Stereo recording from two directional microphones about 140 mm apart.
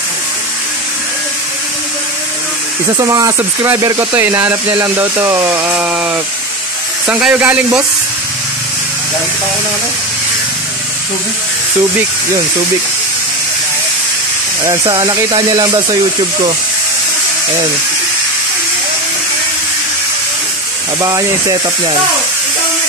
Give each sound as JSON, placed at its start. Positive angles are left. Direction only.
{"t": 3.0, "sound": "speech", "side_deg": -25}
{"t": 7.1, "sound": "speech", "side_deg": -10}
{"t": 14.6, "sound": "speech", "side_deg": -25}
{"t": 21.0, "sound": "speech", "side_deg": -25}